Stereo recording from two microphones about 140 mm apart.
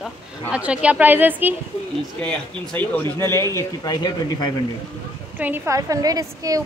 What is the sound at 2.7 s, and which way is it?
Speech, 10° left (ahead or behind).